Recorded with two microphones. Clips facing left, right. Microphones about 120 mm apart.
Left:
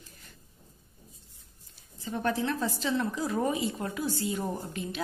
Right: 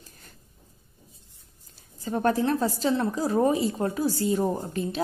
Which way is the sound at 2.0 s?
40° right (ahead or behind).